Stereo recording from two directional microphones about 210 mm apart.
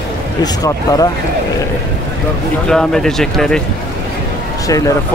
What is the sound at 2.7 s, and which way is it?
Speech, 5° left (ahead or behind).